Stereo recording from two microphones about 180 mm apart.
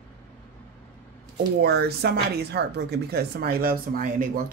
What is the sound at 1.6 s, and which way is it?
Speech, 65° right (ahead or behind).